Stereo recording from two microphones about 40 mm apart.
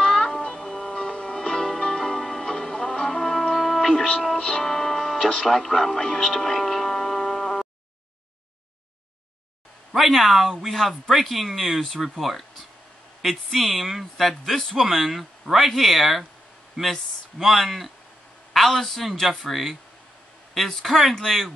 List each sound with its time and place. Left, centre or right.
0.0 s music: centre
0.6 s music: centre
0.9 s music: left
5.3 s speech: centre
9.9 s speech: centre